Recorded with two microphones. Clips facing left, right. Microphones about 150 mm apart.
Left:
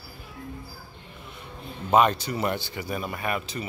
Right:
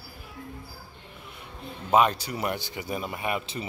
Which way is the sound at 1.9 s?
5° right (ahead or behind).